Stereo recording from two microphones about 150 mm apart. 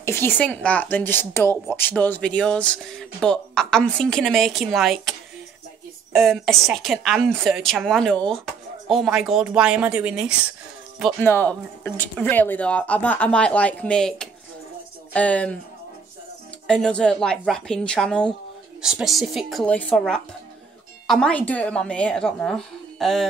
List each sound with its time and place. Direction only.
0.0 s speech: 15° left (ahead or behind); by 5.1 s centre (ahead or behind)
6.1 s speech: centre (ahead or behind)
11.1 s speech: 15° left (ahead or behind)
16.6 s speech: 5° left (ahead or behind)
18.8 s speech: 5° right (ahead or behind)